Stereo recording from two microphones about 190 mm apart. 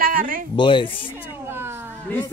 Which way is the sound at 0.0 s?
50° right (ahead or behind).